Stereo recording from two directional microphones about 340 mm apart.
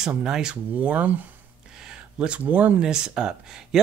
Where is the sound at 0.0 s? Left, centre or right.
Centre.